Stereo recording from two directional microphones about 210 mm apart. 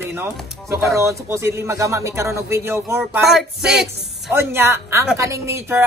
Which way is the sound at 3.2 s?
Centre (ahead or behind).